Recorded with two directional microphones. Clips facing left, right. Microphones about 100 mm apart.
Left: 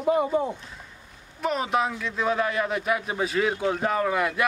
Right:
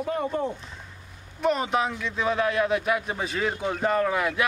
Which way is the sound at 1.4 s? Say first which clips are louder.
Right 1 dB; centre (ahead or behind).